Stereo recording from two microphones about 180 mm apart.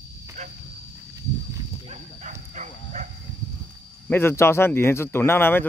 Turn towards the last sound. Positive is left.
turn(degrees=10)  # may be behind; listen again after turning